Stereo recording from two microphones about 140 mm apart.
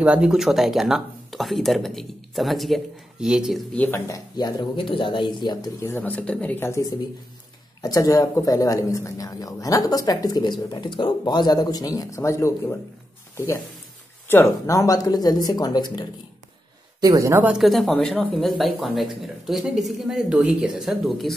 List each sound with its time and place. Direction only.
0.0 s speech: 5° right (ahead or behind)
3.7 s speech: 10° left (ahead or behind)
4.1 s speech: 30° left (ahead or behind)
5.9 s speech: 15° left (ahead or behind)
14.2 s speech: 20° left (ahead or behind)
17.0 s speech: 20° right (ahead or behind)
17.5 s speech: centre (ahead or behind)